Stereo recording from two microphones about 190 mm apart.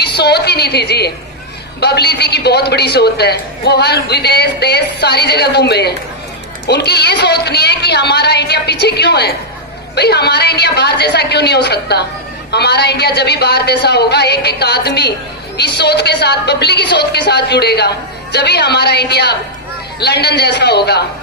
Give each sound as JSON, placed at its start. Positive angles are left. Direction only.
{"t": 0.2, "sound": "a woman's voice", "side_deg": 60}